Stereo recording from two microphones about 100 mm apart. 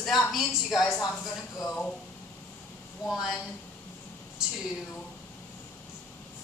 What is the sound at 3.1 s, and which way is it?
Speech, 5° right (ahead or behind).